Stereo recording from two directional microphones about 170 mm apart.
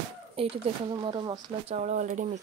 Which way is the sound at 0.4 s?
30° right (ahead or behind).